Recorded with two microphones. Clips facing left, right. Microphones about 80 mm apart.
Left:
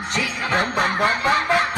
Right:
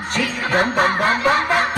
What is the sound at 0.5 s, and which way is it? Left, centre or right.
Snicker, right.